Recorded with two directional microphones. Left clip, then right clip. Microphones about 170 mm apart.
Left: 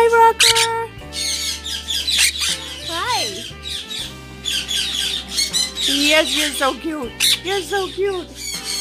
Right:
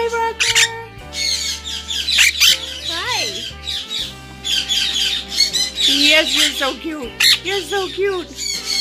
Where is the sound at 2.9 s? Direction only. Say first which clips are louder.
Left 1 dB; 15° left (ahead or behind).